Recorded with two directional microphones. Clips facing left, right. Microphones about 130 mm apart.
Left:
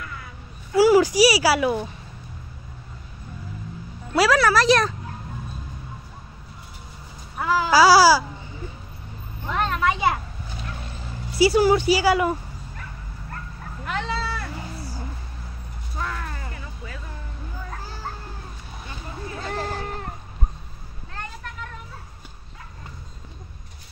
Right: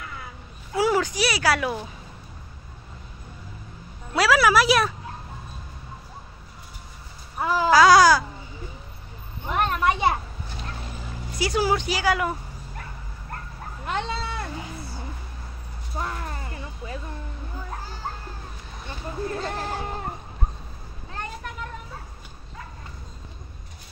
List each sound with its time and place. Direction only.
0.7 s speech: 5° left (ahead or behind)
4.1 s a woman's voice: centre (ahead or behind)
7.3 s babbling: 25° right (ahead or behind)
7.7 s speech: 5° left (ahead or behind)
9.5 s a sound: 15° right (ahead or behind)
11.3 s speech: 5° left (ahead or behind)
13.8 s a sound: 25° right (ahead or behind)
16.0 s music: 25° right (ahead or behind)
19.5 s a sound: centre (ahead or behind)